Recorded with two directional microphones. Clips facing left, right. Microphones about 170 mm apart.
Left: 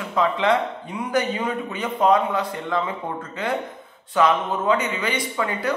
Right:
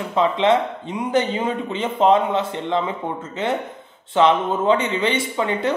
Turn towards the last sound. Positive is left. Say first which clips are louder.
# right 3 dB
turn(degrees=-25)  # may be behind; listen again after turning